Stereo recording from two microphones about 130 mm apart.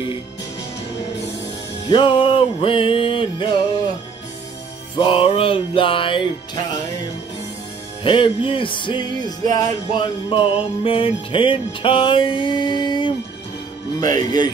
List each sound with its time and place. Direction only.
1.9 s music: 40° left (ahead or behind)
4.9 s music: 45° left (ahead or behind)
8.0 s music: 40° left (ahead or behind)
10.3 s music: 40° left (ahead or behind)